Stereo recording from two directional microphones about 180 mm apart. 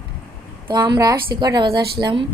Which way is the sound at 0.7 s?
25° right (ahead or behind).